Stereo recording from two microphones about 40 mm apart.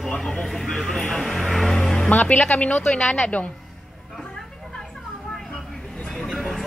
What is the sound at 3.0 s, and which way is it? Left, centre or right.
Speech, centre.